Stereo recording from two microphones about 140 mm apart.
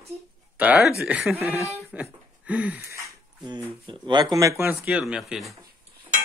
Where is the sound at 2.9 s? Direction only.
30° right (ahead or behind); by 5.5 s centre (ahead or behind).